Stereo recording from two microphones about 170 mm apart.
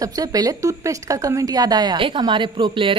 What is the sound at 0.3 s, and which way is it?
Speech, 20° right (ahead or behind).